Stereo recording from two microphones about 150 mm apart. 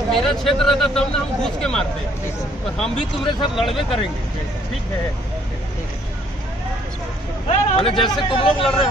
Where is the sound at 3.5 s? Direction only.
Centre (ahead or behind).